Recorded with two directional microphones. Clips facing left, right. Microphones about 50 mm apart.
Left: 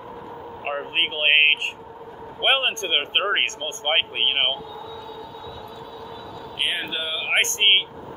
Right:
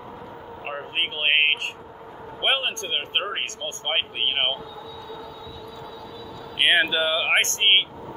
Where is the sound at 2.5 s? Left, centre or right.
Left.